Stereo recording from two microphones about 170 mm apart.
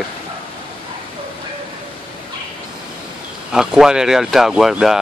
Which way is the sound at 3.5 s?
5° right (ahead or behind).